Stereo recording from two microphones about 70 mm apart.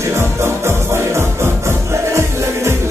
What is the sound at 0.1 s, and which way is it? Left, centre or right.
Music, right.